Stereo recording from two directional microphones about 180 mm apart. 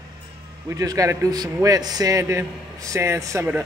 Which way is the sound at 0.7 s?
20° right (ahead or behind).